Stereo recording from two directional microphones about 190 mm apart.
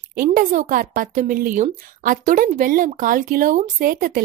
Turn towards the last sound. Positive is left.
turn(degrees=-50)  # may be behind; listen again after turning